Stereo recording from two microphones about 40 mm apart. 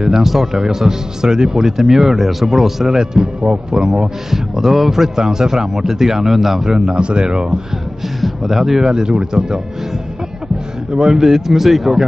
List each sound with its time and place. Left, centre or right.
0.0 s a man's voice: centre
7.0 s speech: right
8.2 s speech: centre
8.9 s speech: right
11.0 s a man's voice: centre